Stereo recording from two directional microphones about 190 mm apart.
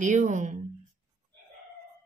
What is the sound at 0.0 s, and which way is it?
Speech, 40° right (ahead or behind).